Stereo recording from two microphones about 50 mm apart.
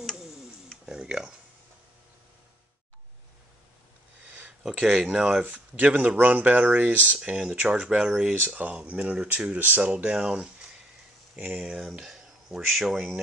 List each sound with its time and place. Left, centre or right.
0.8 s a sound: centre
5.0 s speech: centre
5.4 s speech: right
7.2 s speech: centre
11.3 s speech: right
12.0 s speech: centre